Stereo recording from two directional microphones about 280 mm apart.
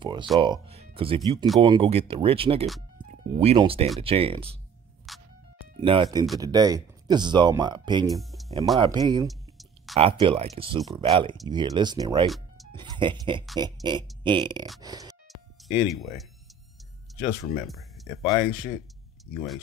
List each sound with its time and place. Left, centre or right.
0.0 s speech: centre
5.1 s music: centre
5.8 s speech: centre
8.2 s music: centre
8.7 s speech: centre
9.3 s a sound: centre
9.9 s speech: centre
15.2 s music: centre
17.1 s speech: centre